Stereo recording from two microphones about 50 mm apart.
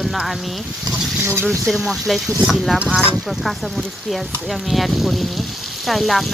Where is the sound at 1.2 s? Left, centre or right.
Right.